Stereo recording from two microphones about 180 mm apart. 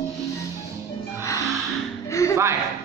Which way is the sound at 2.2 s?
15° left (ahead or behind).